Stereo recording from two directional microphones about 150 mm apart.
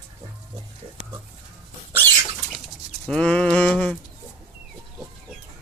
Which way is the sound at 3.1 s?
5° left (ahead or behind).